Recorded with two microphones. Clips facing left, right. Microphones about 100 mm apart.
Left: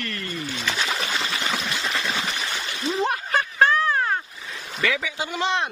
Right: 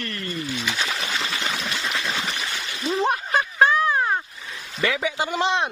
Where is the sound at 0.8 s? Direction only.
Centre (ahead or behind).